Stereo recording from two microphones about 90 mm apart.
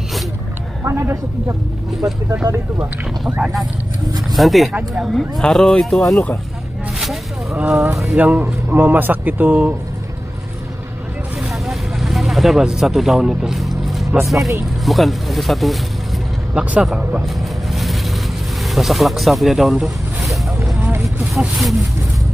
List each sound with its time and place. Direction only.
0.8 s speech: 30° right (ahead or behind)
3.3 s speech: 15° right (ahead or behind)
4.4 s speech: centre (ahead or behind)
7.5 s speech: 10° right (ahead or behind)
8.2 s speech: 15° right (ahead or behind)
11.6 s vehicle: centre (ahead or behind)
14.2 s speech: centre (ahead or behind)